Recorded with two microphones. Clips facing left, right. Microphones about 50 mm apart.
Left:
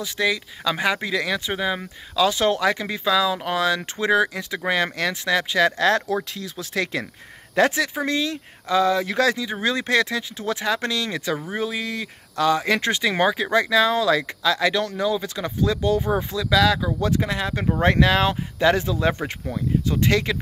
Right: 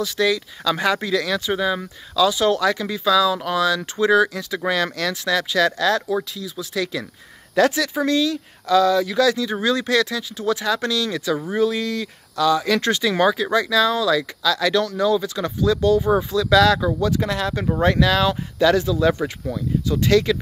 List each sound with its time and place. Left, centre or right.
0.0 s speech: left
2.2 s speech: left
6.3 s speech: left
7.5 s speech: left
12.4 s speech: left
16.4 s speech: centre; by 20.3 s left